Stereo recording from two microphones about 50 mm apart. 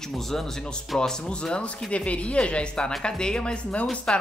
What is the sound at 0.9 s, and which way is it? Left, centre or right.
Speech, centre.